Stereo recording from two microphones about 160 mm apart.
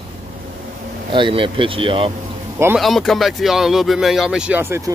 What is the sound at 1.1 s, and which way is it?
Speech, 30° right (ahead or behind).